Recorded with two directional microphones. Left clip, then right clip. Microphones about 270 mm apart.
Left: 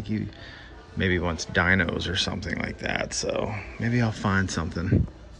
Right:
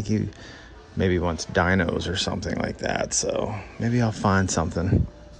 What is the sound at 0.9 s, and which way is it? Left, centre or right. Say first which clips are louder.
Speech: right 2 dB; centre.